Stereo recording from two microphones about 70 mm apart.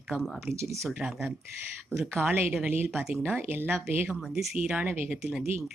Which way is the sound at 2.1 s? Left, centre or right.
Right.